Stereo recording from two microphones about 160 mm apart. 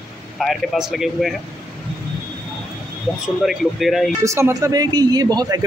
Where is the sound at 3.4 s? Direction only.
Centre (ahead or behind).